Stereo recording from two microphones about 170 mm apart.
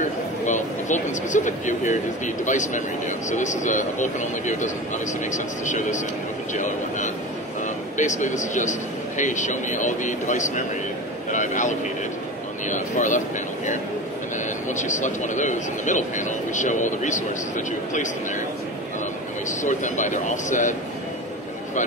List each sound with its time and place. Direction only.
0.5 s a man's voice: 45° left (ahead or behind)
11.3 s a sound: 45° left (ahead or behind)
14.7 s a man's voice: 45° left (ahead or behind)
19.6 s a man's voice: 45° left (ahead or behind)